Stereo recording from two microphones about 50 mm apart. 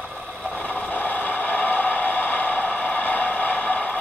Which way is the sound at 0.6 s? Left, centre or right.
Left.